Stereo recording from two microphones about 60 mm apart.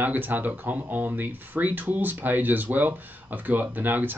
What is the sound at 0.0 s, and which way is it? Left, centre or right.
Speech, right.